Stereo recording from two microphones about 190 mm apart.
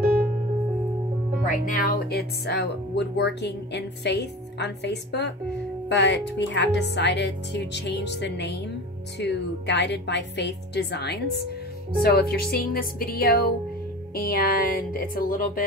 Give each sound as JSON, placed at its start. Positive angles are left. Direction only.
{"t": 0.0, "sound": "music", "side_deg": -50}
{"t": 1.4, "sound": "speech", "side_deg": 45}